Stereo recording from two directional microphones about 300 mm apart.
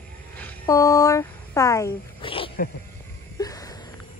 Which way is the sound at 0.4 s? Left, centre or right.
Centre.